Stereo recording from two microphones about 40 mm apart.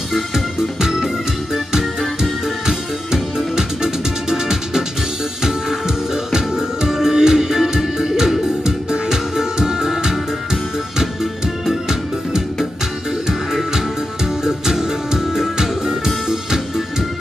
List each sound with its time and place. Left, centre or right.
0.1 s music: centre
3.1 s music: centre